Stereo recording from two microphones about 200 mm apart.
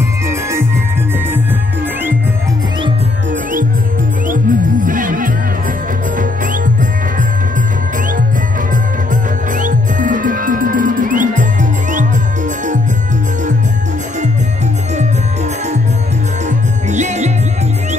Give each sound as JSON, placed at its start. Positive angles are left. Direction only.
{"t": 0.3, "sound": "music", "side_deg": -15}
{"t": 4.3, "sound": "music", "side_deg": -40}
{"t": 9.6, "sound": "music", "side_deg": -40}
{"t": 16.4, "sound": "music", "side_deg": -35}